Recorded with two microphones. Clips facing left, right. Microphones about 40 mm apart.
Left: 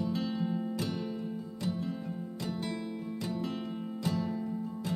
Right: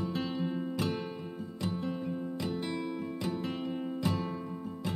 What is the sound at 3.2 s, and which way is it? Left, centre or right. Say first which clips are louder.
Music: right 1 dB; right.